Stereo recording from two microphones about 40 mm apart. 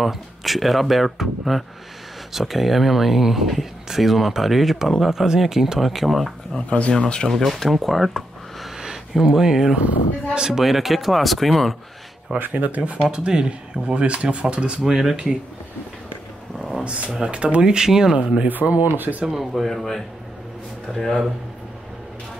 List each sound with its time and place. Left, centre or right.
0.0 s speech: centre
6.9 s speech: left
7.4 s speech: centre
9.1 s speech: centre
10.6 s speech: centre
12.4 s speech: right
13.1 s speech: right
14.8 s speech: centre
16.5 s a sound: centre
16.8 s speech: right
18.5 s speech: right
19.3 s speech: centre